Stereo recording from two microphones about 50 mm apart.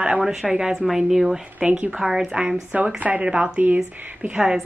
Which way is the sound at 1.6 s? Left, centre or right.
Right.